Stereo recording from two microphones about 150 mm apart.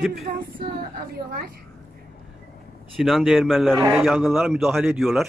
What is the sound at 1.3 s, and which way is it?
Speech, 90° right.